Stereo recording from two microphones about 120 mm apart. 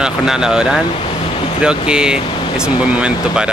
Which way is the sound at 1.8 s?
5° right (ahead or behind).